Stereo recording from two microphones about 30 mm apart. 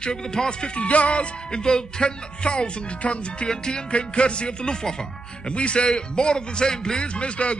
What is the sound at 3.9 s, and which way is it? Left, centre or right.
A man's voice, left.